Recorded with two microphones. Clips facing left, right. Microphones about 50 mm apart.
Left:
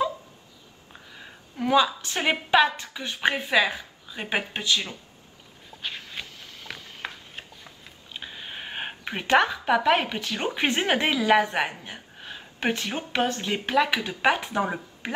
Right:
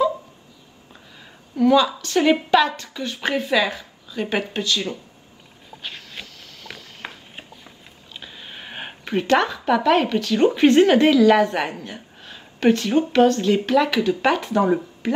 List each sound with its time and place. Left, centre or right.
1.2 s a woman's voice: centre
5.8 s a sound: centre
8.1 s a woman's voice: centre